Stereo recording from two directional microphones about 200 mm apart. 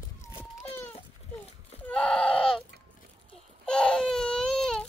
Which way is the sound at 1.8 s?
5° left (ahead or behind).